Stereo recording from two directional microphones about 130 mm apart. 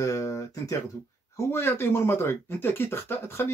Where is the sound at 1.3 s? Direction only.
20° left (ahead or behind).